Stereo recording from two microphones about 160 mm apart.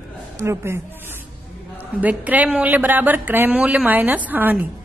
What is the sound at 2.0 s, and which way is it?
A woman's voice, 10° right (ahead or behind).